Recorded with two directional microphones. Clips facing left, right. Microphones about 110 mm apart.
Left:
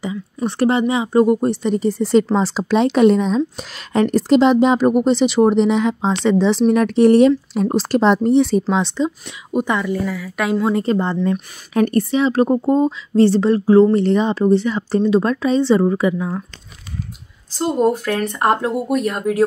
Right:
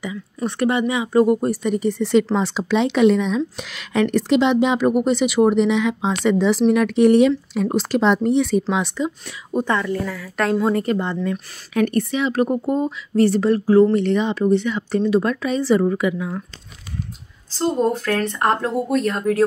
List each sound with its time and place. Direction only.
0.0 s a woman's voice: 30° left (ahead or behind)
9.5 s speech: 15° left (ahead or behind)
10.7 s speech: 30° left (ahead or behind)
11.1 s speech: 20° left (ahead or behind)
11.7 s a woman's voice: 35° left (ahead or behind)
17.6 s speech: 10° left (ahead or behind)